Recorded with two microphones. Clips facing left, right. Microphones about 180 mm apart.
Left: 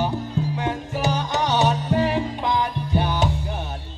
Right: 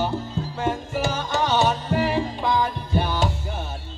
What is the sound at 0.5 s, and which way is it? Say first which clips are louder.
Music: right 1 dB; 15° left (ahead or behind).